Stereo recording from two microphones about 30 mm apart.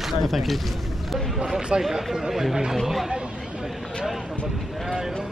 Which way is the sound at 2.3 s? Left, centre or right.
Centre.